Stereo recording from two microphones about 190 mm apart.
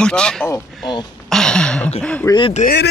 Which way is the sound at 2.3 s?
25° left (ahead or behind).